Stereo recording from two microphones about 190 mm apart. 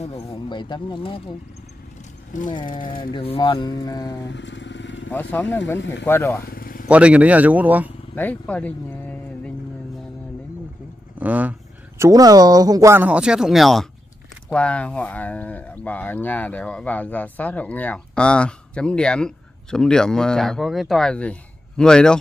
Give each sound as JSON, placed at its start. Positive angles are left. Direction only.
{"t": 0.3, "sound": "speech", "side_deg": 25}
{"t": 2.3, "sound": "speech", "side_deg": 40}
{"t": 3.0, "sound": "speech", "side_deg": 30}
{"t": 4.3, "sound": "motorcycle", "side_deg": 70}
{"t": 5.3, "sound": "speech", "side_deg": 10}
{"t": 5.8, "sound": "speech", "side_deg": 70}
{"t": 6.0, "sound": "speech", "side_deg": 15}
{"t": 6.5, "sound": "vehicle", "side_deg": 50}
{"t": 6.9, "sound": "speech", "side_deg": -5}
{"t": 8.1, "sound": "speech", "side_deg": 10}
{"t": 11.1, "sound": "speech", "side_deg": -10}
{"t": 12.0, "sound": "speech", "side_deg": -20}